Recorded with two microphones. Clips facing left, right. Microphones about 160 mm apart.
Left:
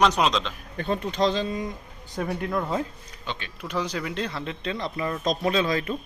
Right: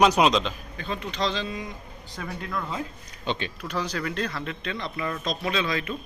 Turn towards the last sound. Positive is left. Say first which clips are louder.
# left 4 dB
turn(degrees=40)  # may be behind; listen again after turning